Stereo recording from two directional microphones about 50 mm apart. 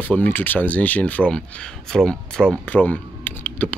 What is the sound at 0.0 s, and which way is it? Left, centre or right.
Speech, left.